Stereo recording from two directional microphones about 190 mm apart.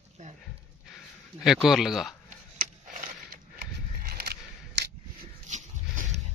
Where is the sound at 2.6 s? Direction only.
45° right (ahead or behind).